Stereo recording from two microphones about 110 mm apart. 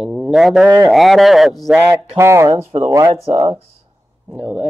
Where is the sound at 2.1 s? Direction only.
25° right (ahead or behind).